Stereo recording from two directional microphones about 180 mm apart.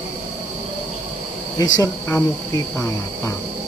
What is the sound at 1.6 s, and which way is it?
Cricket, 15° left (ahead or behind).